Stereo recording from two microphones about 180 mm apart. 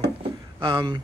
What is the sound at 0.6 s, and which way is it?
Speech, 25° right (ahead or behind).